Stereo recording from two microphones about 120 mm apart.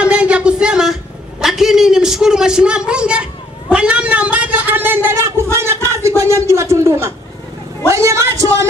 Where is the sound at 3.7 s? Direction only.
10° right (ahead or behind).